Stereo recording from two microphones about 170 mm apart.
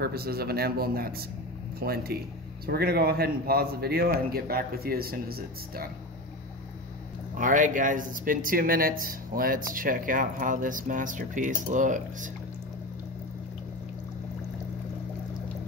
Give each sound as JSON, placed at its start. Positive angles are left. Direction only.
{"t": 0.0, "sound": "a man's voice", "side_deg": -65}
{"t": 7.3, "sound": "speech", "side_deg": -50}